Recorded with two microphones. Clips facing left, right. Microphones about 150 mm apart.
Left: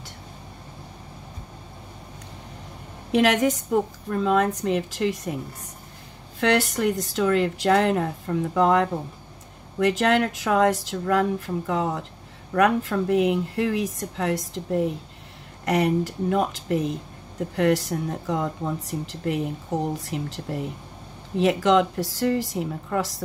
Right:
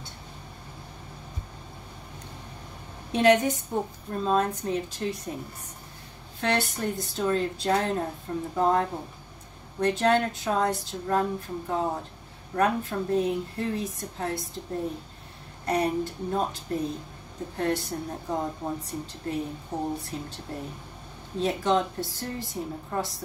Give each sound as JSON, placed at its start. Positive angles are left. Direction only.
{"t": 3.1, "sound": "speech", "side_deg": 90}
{"t": 6.4, "sound": "speech", "side_deg": 90}